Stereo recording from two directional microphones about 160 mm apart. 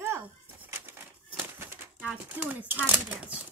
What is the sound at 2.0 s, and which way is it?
Speech, 10° right (ahead or behind).